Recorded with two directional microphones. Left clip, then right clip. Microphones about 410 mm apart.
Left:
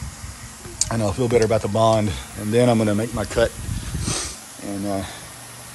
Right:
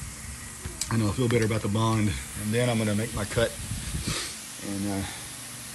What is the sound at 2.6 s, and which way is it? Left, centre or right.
Speech, centre.